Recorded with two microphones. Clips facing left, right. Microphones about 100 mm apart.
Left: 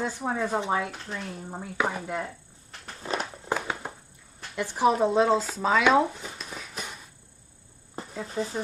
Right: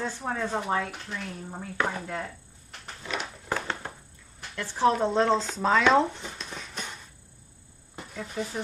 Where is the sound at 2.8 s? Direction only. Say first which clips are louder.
Left 3 dB; 40° left (ahead or behind).